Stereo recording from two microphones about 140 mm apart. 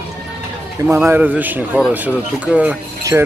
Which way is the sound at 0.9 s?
10° right (ahead or behind).